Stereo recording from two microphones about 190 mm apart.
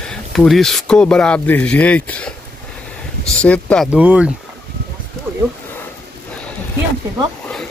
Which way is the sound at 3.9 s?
5° right (ahead or behind).